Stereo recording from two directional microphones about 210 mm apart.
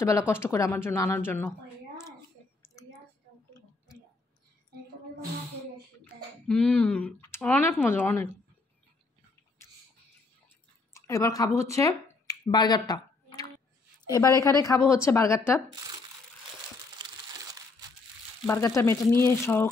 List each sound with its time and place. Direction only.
0.3 s speech: 10° left (ahead or behind)
6.0 s speech: 5° left (ahead or behind)
10.9 s a sound: 15° left (ahead or behind)
14.0 s speech: 15° left (ahead or behind)
18.8 s speech: 10° left (ahead or behind)